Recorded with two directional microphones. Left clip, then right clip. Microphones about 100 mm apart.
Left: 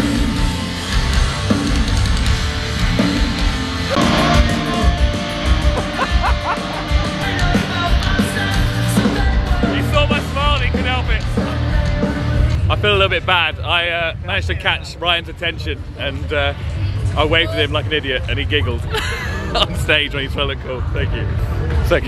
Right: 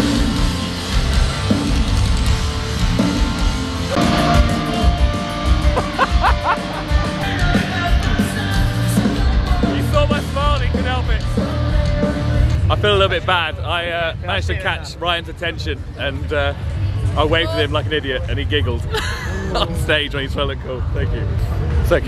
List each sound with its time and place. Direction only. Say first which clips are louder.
1.5 s music: left 2 dB; 15° left (ahead or behind)
3.0 s music: left 1 dB; 15° left (ahead or behind)
6.2 s music: right 3 dB; 20° right (ahead or behind)
6.6 s music: left 1 dB; 15° left (ahead or behind)
12.6 s speech: even; 5° right (ahead or behind)
17.5 s speech: even; 15° right (ahead or behind)
17.9 s speech: left 2 dB; centre (ahead or behind)
21.9 s speech: even; centre (ahead or behind)